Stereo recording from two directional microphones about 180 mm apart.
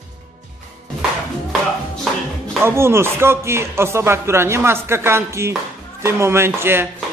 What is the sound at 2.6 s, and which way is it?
Speech, 15° right (ahead or behind).